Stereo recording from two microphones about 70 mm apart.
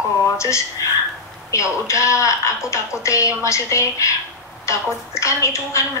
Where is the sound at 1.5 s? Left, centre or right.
Left.